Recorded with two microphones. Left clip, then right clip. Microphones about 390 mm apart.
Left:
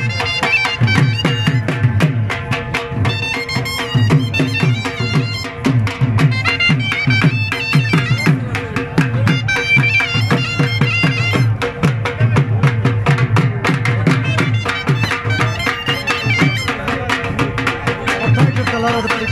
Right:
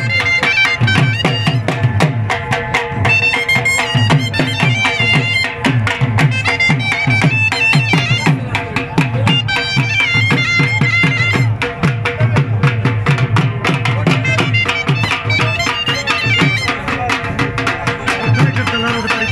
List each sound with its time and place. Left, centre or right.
0.4 s music: centre
2.5 s music: centre
4.1 s music: right; by 11.7 s centre
13.8 s music: centre